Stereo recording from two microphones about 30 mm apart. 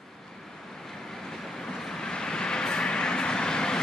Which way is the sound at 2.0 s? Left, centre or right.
Left.